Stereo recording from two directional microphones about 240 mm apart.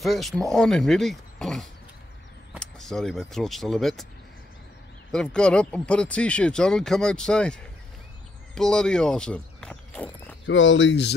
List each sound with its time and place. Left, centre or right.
0.0 s speech: centre
5.1 s speech: centre
10.4 s speech: left